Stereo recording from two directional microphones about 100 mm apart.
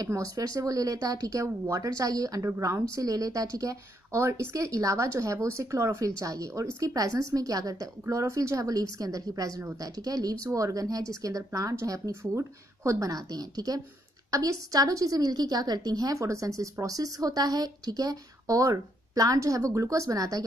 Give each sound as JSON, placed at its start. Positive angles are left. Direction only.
{"t": 0.0, "sound": "a woman's voice", "side_deg": -35}